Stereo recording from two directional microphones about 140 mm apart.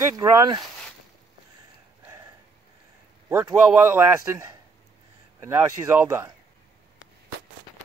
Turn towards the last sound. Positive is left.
turn(degrees=-15)  # may be behind; listen again after turning